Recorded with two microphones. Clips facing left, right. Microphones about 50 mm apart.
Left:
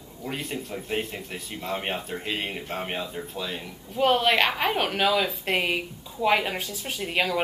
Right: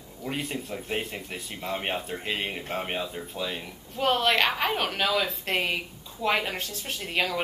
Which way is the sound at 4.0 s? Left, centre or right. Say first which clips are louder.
Left 2 dB; centre.